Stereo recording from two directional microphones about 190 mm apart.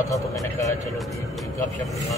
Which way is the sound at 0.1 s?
15° left (ahead or behind).